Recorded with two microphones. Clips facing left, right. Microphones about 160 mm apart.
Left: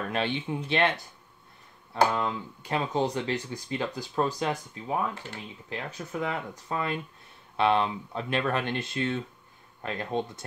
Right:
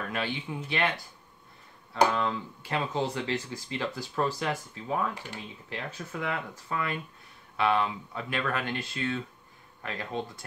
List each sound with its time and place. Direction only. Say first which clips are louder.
0.1 s speech: left 6 dB; 25° left (ahead or behind)
2.1 s speech: even; 20° left (ahead or behind)
5.1 s speech: even; 15° right (ahead or behind)
5.7 s speech: left 2 dB; 20° left (ahead or behind)